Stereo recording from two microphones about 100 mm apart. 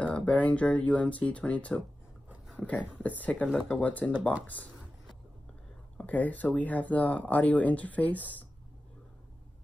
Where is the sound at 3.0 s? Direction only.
15° left (ahead or behind).